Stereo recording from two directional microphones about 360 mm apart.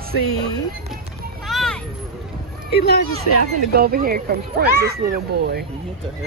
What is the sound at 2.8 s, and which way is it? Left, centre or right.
Speech, left.